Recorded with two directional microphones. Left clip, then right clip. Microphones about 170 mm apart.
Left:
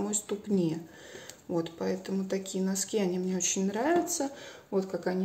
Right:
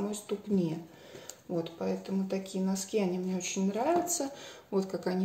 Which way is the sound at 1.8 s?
35° left (ahead or behind).